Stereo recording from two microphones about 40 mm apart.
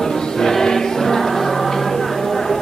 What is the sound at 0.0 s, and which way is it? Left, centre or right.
Choir, centre.